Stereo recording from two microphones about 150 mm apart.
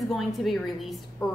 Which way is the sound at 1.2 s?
20° left (ahead or behind).